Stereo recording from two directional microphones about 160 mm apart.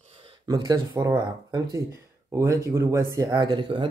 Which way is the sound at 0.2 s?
25° right (ahead or behind).